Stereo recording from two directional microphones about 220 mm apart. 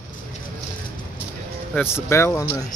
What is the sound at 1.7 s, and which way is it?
Speech, 10° left (ahead or behind).